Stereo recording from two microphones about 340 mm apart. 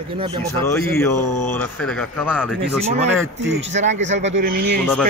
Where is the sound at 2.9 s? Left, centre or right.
Centre.